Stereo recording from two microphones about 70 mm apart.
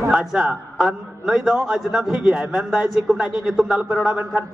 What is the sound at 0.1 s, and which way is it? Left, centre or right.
A man's voice, centre.